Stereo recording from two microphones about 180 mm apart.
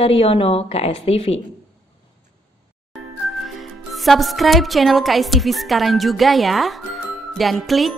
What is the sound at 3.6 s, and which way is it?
Speech, centre (ahead or behind).